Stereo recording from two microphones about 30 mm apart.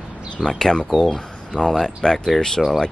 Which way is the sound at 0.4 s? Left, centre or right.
Centre.